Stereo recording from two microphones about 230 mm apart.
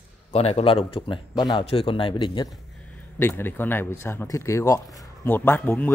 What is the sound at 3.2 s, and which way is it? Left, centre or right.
A man's voice, centre.